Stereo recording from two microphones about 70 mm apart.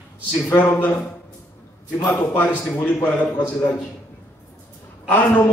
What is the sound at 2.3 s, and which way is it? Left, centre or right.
A man's voice, centre.